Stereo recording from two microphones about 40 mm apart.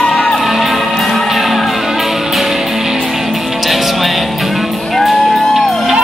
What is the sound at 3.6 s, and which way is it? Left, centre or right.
Music, centre.